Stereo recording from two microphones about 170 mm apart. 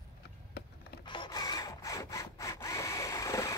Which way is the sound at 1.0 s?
25° left (ahead or behind).